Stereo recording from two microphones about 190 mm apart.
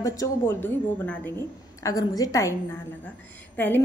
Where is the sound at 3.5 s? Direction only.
10° left (ahead or behind).